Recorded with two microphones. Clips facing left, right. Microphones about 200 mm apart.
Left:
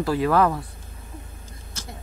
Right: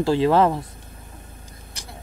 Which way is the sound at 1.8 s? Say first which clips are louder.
Left 4 dB; 15° right (ahead or behind).